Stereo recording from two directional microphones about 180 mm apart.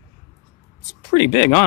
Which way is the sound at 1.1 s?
30° left (ahead or behind).